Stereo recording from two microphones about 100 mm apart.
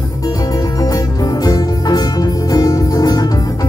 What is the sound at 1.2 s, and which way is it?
Music, 40° left (ahead or behind).